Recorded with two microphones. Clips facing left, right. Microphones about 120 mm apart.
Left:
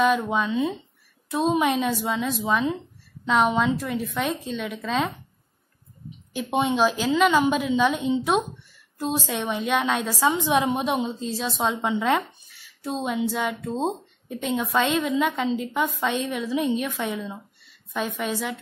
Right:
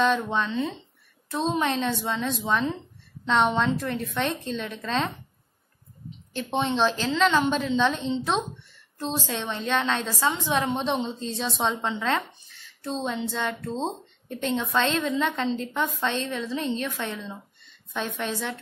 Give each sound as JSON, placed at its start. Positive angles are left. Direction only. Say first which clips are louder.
{"t": 0.0, "sound": "a woman's voice", "louder": "left 2 dB", "side_deg": 5}
{"t": 6.3, "sound": "a woman's voice", "louder": "left 3 dB", "side_deg": 10}